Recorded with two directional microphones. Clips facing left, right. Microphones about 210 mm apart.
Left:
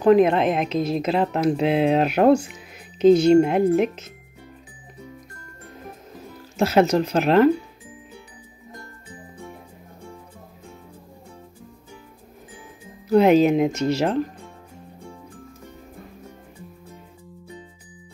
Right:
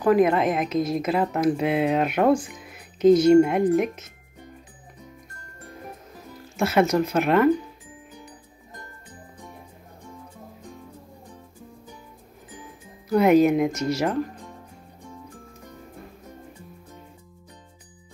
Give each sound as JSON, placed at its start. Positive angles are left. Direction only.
{"t": 0.0, "sound": "speech", "side_deg": 25}
{"t": 6.6, "sound": "speech", "side_deg": 35}
{"t": 13.1, "sound": "speech", "side_deg": 30}